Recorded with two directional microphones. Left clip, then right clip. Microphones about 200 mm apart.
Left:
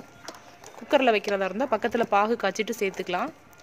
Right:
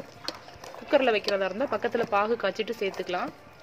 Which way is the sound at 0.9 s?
45° left (ahead or behind).